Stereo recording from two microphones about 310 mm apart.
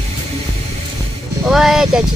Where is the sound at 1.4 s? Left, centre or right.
Centre.